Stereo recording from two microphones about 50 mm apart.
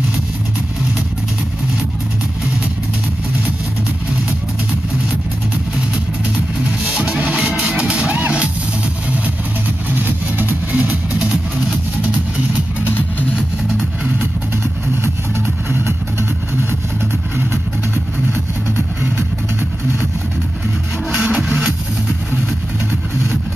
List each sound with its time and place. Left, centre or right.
6.6 s music: right
9.9 s music: right
10.7 s music: right
15.3 s music: right
21.1 s music: centre